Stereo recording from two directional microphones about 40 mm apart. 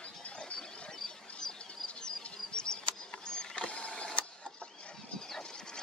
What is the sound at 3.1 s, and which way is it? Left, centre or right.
Mechanisms, centre.